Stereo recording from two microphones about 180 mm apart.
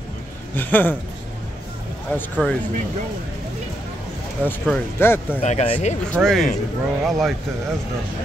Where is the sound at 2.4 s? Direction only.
5° left (ahead or behind).